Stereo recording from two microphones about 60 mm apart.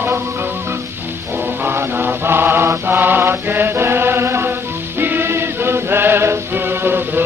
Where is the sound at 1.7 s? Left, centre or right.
Right.